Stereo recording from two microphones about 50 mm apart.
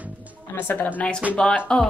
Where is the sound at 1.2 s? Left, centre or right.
Right.